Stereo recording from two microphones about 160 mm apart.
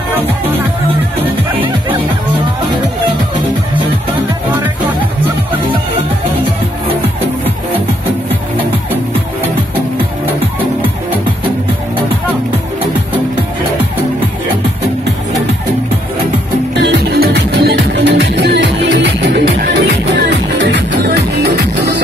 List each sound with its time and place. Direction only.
16.8 s music: 90° right